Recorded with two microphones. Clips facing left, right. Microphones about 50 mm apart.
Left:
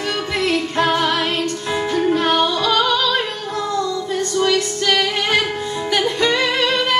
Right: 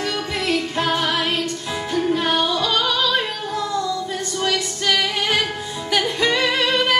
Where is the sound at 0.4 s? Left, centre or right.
Centre.